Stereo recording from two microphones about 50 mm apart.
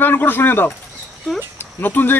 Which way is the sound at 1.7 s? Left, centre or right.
Left.